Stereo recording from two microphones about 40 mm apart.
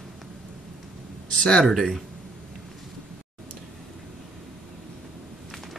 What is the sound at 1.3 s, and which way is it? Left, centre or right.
Speech, centre.